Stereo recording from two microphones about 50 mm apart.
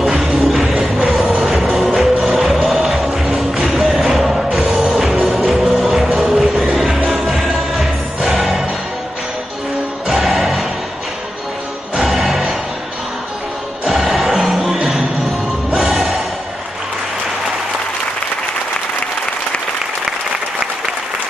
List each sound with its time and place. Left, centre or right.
0.0 s music: centre
0.7 s train: centre
1.4 s music: centre
10.0 s music: centre
11.9 s music: centre
13.8 s music: centre